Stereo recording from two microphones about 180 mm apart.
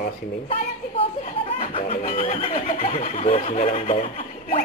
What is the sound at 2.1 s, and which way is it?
Speech, 35° left (ahead or behind).